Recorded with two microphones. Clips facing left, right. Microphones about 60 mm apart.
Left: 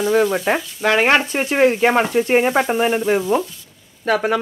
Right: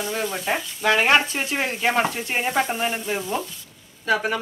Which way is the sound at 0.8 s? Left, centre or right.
Left.